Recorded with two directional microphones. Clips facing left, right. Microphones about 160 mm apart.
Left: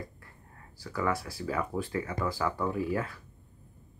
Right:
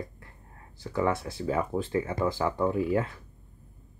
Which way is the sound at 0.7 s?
25° right (ahead or behind).